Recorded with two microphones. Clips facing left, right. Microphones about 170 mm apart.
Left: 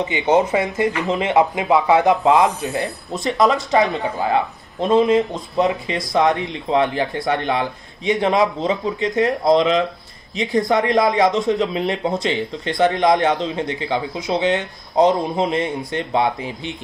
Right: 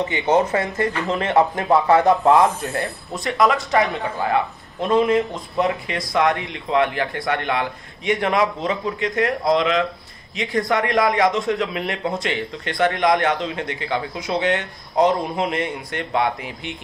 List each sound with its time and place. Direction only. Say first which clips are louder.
0.0 s a man's voice: left 2 dB; 15° left (ahead or behind)